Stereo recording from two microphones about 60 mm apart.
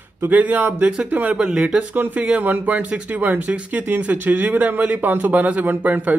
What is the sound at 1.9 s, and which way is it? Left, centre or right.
Speech, right.